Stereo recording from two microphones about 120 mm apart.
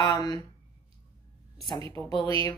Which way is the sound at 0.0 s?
35° left (ahead or behind).